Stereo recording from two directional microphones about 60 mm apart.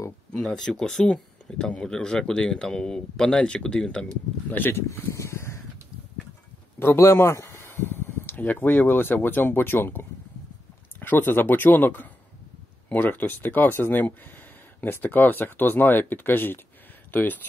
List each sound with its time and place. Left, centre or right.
0.5 s speech: centre
4.5 s speech: left
5.1 s a sound: left
6.8 s speech: left